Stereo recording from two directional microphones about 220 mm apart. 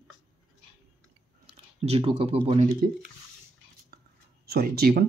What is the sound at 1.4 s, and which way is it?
Speech, 30° right (ahead or behind).